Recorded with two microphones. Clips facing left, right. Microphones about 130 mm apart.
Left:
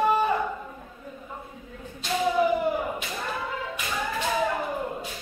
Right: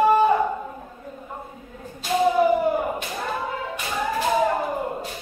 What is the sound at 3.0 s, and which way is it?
Clapping, 25° right (ahead or behind).